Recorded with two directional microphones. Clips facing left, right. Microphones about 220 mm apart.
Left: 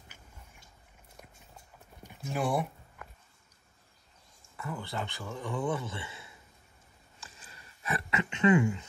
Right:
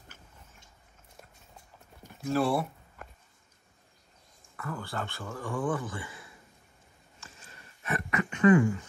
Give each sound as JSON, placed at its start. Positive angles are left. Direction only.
{"t": 2.2, "sound": "speech", "side_deg": 15}
{"t": 4.6, "sound": "speech", "side_deg": 20}
{"t": 8.1, "sound": "a sound", "side_deg": 25}